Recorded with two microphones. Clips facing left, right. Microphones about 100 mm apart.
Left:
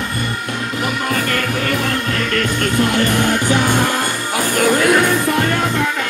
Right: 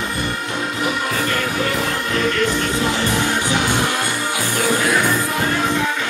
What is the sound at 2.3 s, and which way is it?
Music, 55° left (ahead or behind).